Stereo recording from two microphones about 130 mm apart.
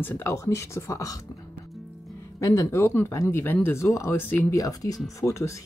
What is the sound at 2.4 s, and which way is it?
Speech, 25° left (ahead or behind).